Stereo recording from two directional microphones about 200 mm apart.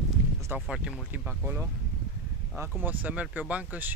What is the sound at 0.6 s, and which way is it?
Speech, 5° right (ahead or behind).